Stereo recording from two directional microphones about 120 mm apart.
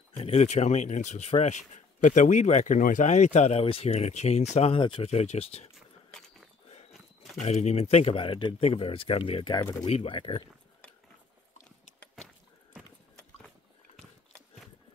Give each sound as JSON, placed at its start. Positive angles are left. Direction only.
{"t": 0.2, "sound": "speech", "side_deg": 60}
{"t": 2.0, "sound": "speech", "side_deg": 90}
{"t": 4.6, "sound": "speech", "side_deg": 50}
{"t": 5.8, "sound": "a sound", "side_deg": 0}
{"t": 7.3, "sound": "speech", "side_deg": 65}
{"t": 8.5, "sound": "speech", "side_deg": 55}